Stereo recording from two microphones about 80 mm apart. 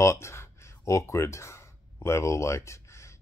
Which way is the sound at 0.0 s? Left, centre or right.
Left.